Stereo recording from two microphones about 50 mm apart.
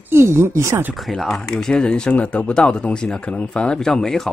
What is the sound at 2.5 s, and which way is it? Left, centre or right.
Speech, centre.